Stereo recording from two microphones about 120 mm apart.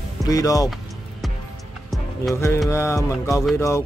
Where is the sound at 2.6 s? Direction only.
25° left (ahead or behind).